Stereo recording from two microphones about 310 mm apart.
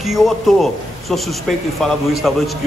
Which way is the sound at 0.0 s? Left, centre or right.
Centre.